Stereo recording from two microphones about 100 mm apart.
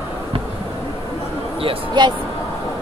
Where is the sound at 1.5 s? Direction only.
55° right (ahead or behind).